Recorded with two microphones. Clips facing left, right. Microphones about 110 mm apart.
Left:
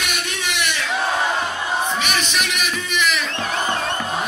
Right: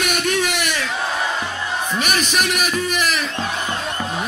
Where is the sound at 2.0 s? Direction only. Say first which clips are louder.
Right 2 dB; 45° right (ahead or behind).